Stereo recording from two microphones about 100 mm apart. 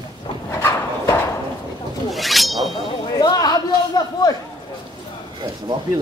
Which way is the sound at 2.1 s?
Centre (ahead or behind).